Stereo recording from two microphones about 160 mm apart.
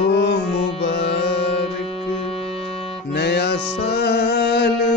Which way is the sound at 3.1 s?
90° left.